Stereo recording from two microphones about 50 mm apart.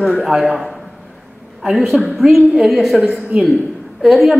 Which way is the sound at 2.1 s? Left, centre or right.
Centre.